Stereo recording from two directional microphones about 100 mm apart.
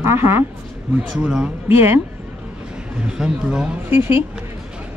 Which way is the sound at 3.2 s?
5° right (ahead or behind).